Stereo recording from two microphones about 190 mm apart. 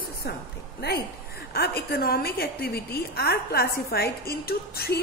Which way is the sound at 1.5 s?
55° left (ahead or behind).